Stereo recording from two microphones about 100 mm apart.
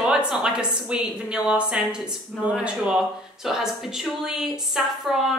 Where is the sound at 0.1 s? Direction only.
5° right (ahead or behind).